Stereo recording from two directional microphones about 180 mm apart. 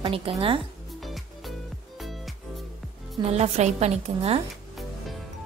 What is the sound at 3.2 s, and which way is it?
A woman's voice, 35° right (ahead or behind).